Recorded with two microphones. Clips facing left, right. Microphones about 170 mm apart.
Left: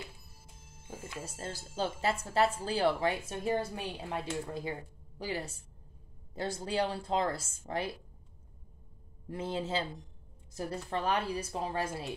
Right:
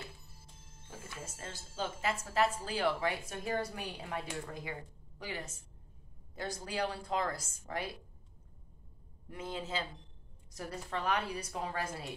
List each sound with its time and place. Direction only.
0.7 s music: 15° left (ahead or behind)
1.2 s a woman's voice: 35° left (ahead or behind)
5.2 s a woman's voice: 35° left (ahead or behind)
9.3 s speech: 30° left (ahead or behind)